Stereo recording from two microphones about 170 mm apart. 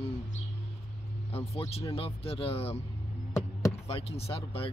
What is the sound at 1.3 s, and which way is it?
Speech, 35° left (ahead or behind).